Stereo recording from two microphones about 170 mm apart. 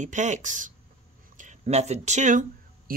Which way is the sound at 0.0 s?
45° right (ahead or behind).